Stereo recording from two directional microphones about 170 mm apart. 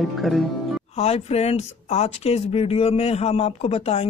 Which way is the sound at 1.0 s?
35° left (ahead or behind).